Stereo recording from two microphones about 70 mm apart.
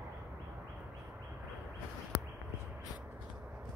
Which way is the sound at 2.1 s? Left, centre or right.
Centre.